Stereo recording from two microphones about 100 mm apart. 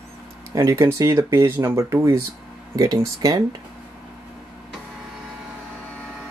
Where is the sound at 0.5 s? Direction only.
30° right (ahead or behind).